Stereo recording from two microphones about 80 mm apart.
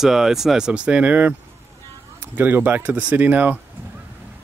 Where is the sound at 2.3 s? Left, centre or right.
Right.